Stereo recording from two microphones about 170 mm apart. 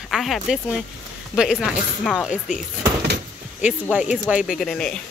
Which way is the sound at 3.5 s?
10° right (ahead or behind).